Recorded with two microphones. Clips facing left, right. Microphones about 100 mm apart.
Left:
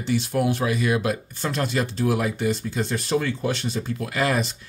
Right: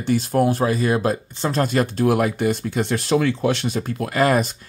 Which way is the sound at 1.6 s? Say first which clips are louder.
Right 5 dB; 50° right (ahead or behind).